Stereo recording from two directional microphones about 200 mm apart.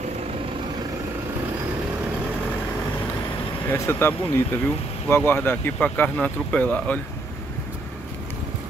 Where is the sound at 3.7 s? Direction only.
10° left (ahead or behind).